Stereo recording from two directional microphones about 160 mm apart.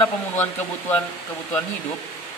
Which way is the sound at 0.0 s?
10° left (ahead or behind).